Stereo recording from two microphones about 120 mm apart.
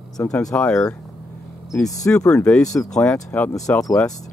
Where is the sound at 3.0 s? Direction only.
10° left (ahead or behind).